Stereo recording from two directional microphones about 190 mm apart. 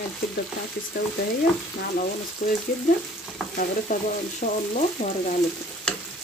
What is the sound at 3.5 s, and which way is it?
Frying, 50° left (ahead or behind).